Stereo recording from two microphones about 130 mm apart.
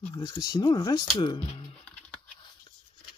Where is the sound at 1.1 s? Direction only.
45° left (ahead or behind).